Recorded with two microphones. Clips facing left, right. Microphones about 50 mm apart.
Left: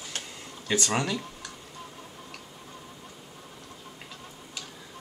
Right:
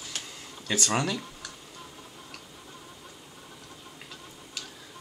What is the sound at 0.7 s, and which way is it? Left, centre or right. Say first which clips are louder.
Speech: left 1 dB; centre.